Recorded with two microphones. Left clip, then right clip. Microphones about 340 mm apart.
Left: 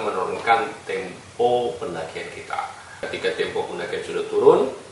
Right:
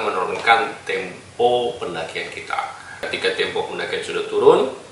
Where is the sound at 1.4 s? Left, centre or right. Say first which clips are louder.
Right 2 dB; left.